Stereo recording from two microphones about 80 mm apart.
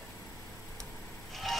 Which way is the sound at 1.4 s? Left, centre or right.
Centre.